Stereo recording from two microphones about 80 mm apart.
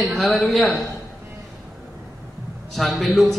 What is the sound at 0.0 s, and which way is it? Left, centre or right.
Speech, centre.